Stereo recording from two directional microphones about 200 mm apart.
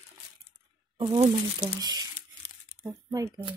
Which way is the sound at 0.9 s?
25° right (ahead or behind).